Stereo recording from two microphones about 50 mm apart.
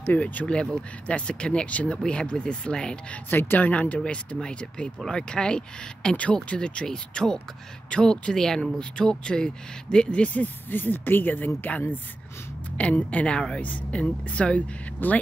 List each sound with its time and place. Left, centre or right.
0.1 s speech: left
3.3 s speech: left
4.0 s speech: left
13.6 s speech: left
15.0 s speech: left